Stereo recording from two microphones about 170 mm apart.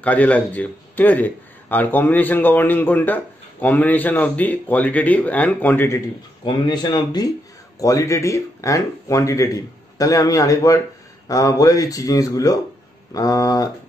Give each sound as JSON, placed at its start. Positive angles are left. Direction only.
{"t": 0.0, "sound": "a man's voice", "side_deg": 10}
{"t": 6.4, "sound": "speech", "side_deg": 25}